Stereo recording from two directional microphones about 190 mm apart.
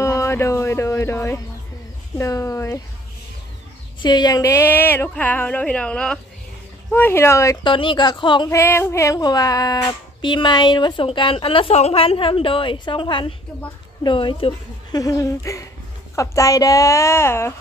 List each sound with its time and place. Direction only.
0.0 s speech: 15° left (ahead or behind)
4.0 s speech: 20° left (ahead or behind)
8.5 s speech: 15° left (ahead or behind)